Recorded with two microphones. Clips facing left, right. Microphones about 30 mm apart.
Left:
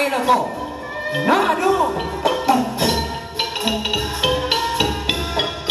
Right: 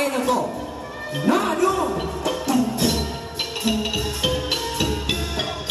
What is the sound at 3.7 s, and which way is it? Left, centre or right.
Music, left.